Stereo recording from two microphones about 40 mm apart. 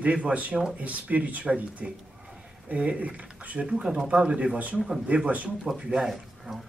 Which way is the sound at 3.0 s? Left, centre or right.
Right.